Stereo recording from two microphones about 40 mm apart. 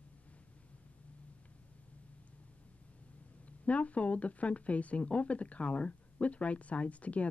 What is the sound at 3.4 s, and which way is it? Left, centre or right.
Speech, left.